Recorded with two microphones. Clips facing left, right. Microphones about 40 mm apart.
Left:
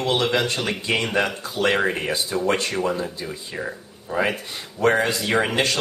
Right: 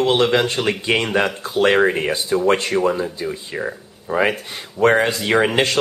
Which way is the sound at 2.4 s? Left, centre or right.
Right.